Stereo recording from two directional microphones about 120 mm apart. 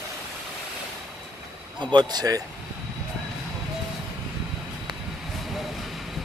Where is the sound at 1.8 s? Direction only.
40° right (ahead or behind).